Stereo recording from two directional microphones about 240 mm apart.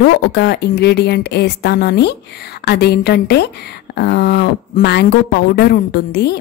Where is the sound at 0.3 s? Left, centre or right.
Left.